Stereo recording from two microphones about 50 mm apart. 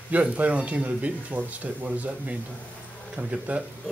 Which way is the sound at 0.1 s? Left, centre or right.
Right.